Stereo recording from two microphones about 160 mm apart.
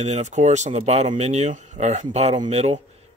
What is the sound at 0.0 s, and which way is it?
Speech, 45° right (ahead or behind).